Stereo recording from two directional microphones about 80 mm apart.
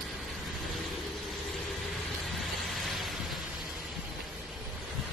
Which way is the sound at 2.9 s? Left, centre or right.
Centre.